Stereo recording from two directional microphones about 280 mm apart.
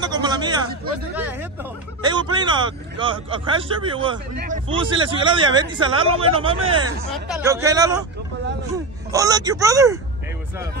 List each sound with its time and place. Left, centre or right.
0.0 s a sound: centre
1.1 s speech: centre
9.1 s speech: centre